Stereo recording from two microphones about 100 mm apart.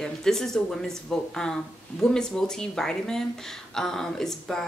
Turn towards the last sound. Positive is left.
turn(degrees=5)  # may be behind; listen again after turning